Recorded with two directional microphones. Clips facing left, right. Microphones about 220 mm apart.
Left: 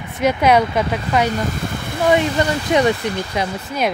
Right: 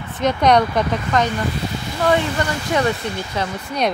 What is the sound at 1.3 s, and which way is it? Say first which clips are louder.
Speech: left 1 dB; 55° left (ahead or behind).